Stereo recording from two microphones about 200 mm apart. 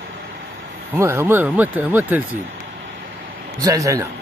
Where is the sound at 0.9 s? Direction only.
10° right (ahead or behind).